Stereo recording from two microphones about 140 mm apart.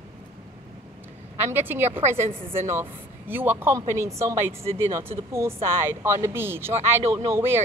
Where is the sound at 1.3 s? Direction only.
15° right (ahead or behind).